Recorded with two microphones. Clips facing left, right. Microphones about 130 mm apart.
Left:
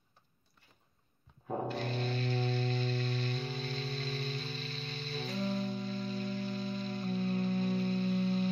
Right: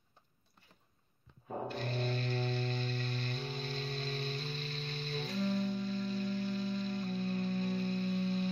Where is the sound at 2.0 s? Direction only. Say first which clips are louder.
Left 2 dB; 55° right (ahead or behind).